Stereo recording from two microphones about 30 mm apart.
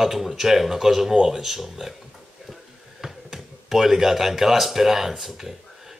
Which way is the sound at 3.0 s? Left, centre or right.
Centre.